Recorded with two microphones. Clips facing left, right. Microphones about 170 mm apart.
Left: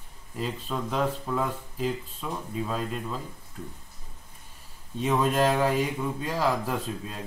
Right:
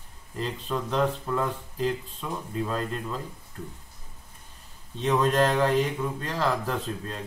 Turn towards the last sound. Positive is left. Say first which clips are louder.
# right 1 dB
turn(degrees=10)  # may be behind; listen again after turning